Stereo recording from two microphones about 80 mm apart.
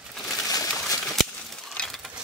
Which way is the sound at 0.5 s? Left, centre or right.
Left.